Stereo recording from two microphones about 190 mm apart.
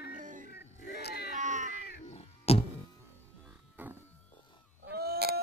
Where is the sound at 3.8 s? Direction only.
10° right (ahead or behind).